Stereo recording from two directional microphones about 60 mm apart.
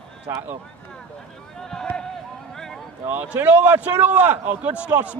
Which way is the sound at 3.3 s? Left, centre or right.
Right.